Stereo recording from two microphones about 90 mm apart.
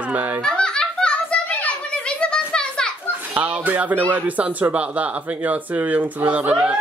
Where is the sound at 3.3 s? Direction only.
15° right (ahead or behind).